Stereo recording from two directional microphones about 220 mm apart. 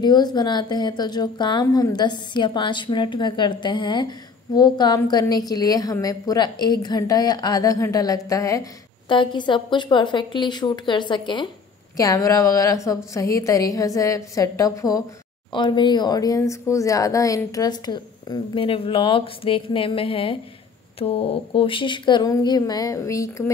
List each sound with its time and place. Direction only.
0.0 s a woman's voice: 20° left (ahead or behind)